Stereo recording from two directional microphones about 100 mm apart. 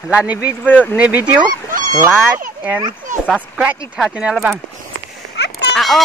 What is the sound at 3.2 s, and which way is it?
Speech, 10° right (ahead or behind).